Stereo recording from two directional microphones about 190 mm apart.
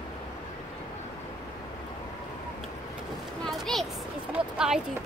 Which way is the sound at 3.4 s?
Centre (ahead or behind).